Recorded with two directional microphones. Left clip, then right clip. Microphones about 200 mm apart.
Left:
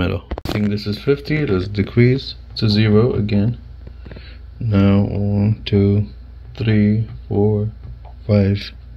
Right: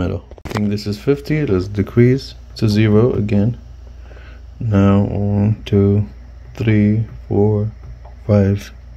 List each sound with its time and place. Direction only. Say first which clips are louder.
0.0 s speech: left 2 dB; 10° right (ahead or behind)
0.7 s speech: right 1 dB; 30° right (ahead or behind)
2.1 s speech: even; 35° right (ahead or behind)
4.2 s speech: right 3 dB; 15° right (ahead or behind)
6.5 s speech: right 2 dB; 35° right (ahead or behind)
8.3 s speech: right 2 dB; 25° right (ahead or behind)